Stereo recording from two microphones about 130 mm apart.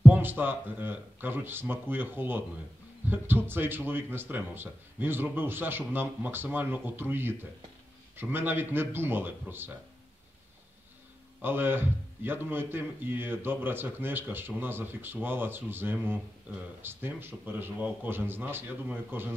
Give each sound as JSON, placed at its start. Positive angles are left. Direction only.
{"t": 0.0, "sound": "a man's voice", "side_deg": -15}
{"t": 11.4, "sound": "a man's voice", "side_deg": -15}